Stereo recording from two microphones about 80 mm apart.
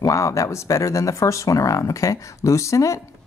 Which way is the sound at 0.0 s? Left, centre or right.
Left.